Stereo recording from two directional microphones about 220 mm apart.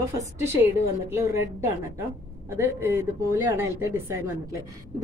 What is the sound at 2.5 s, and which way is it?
A woman's voice, 10° right (ahead or behind).